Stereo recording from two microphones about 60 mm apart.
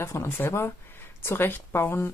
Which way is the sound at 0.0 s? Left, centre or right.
Left.